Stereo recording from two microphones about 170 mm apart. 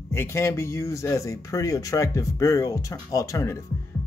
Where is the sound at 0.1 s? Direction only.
15° left (ahead or behind).